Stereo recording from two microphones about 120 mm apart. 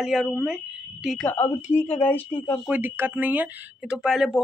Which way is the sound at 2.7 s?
15° right (ahead or behind).